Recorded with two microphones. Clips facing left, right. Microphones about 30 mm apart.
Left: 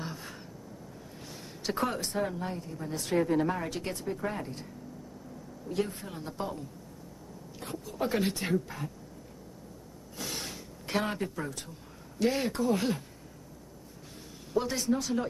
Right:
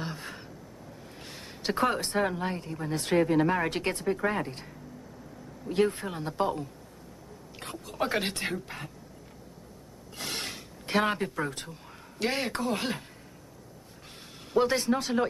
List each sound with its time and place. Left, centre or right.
0.0 s a sound: right
1.6 s speech: right
2.0 s speech: right
5.7 s speech: right
7.8 s speech: right
8.2 s speech: right
8.5 s speech: right
10.1 s a sound: right
10.9 s speech: right
14.5 s speech: right